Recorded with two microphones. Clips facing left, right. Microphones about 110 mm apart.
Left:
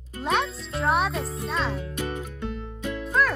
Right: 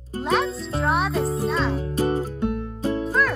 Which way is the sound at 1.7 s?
35° right (ahead or behind).